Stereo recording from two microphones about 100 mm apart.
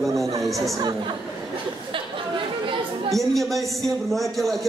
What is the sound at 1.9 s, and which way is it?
Chatter, 60° right (ahead or behind).